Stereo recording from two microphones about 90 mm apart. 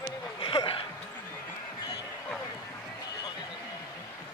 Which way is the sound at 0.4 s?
75° left (ahead or behind).